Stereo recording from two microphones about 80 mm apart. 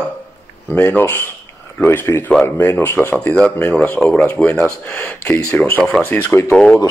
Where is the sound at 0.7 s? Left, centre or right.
Left.